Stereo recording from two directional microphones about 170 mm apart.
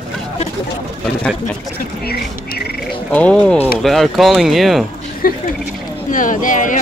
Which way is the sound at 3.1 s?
10° left (ahead or behind).